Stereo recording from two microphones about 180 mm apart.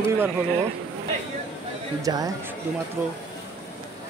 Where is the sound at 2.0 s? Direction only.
20° right (ahead or behind).